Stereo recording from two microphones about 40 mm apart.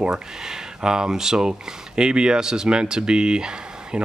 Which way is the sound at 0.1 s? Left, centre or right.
Centre.